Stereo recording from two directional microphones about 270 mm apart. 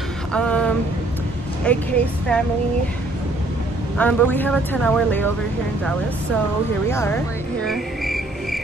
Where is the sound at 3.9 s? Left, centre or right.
Centre.